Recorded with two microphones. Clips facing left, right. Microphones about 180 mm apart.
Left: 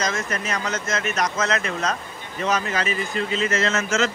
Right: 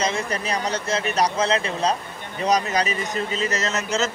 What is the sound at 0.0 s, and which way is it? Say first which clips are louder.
Speech: right 1 dB; 30° right (ahead or behind).